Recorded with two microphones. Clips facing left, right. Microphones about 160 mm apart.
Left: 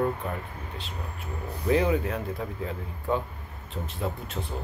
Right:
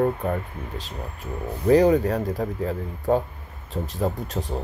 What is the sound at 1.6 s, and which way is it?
Speech, 40° right (ahead or behind).